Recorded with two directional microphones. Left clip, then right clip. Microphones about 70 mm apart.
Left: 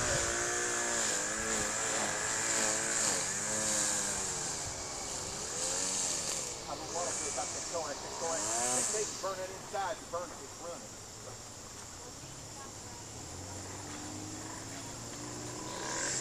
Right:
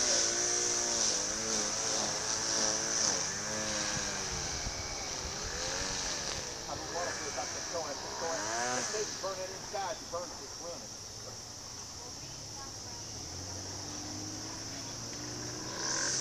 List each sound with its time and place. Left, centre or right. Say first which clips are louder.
0.0 s vehicle: right 2 dB; right
3.2 s vehicle: even; centre
3.7 s vehicle: even; centre
5.4 s vehicle: even; left
15.7 s a sound: right 3 dB; right